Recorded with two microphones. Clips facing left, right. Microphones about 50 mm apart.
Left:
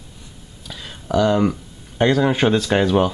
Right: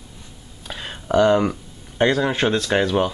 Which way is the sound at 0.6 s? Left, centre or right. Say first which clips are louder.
Right 3 dB; right.